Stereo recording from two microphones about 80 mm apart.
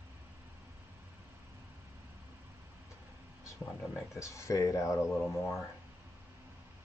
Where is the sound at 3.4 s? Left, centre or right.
Left.